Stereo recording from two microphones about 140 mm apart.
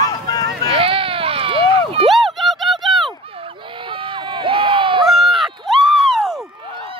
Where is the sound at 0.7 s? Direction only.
40° right (ahead or behind).